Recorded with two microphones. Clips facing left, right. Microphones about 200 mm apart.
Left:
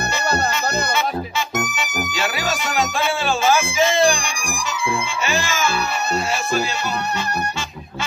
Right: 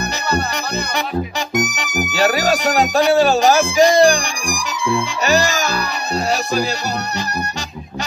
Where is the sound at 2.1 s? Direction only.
40° right (ahead or behind).